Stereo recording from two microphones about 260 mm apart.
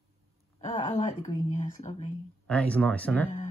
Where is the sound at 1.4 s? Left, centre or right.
Left.